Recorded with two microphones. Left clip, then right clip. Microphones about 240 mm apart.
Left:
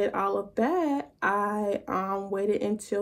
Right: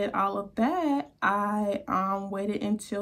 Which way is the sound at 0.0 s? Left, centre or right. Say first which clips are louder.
Left 1 dB; centre.